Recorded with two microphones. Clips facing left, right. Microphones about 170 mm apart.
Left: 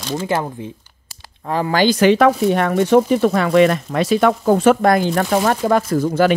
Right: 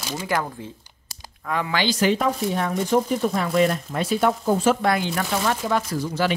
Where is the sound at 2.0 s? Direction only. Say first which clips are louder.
Left 8 dB; 75° left (ahead or behind).